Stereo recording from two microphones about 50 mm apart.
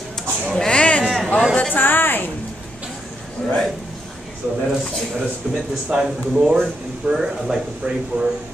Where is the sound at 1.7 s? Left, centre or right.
Left.